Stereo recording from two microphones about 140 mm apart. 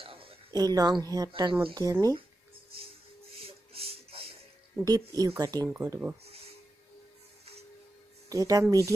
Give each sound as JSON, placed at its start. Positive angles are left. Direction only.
{"t": 0.0, "sound": "a sound", "side_deg": -40}
{"t": 0.6, "sound": "speech", "side_deg": -30}
{"t": 2.9, "sound": "music", "side_deg": -45}
{"t": 4.8, "sound": "speech", "side_deg": -30}
{"t": 5.7, "sound": "speech", "side_deg": -15}
{"t": 8.3, "sound": "speech", "side_deg": -25}